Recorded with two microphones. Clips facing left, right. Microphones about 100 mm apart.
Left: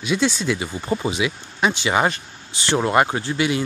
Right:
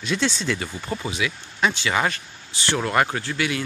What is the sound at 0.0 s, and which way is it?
Speech, 10° left (ahead or behind).